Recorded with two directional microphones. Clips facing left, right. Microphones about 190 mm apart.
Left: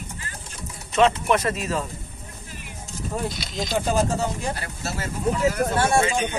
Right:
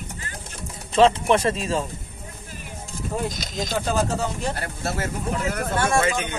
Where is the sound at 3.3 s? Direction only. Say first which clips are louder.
Left 1 dB; 45° right (ahead or behind).